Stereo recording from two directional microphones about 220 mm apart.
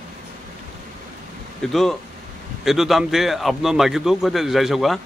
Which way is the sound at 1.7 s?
Centre (ahead or behind).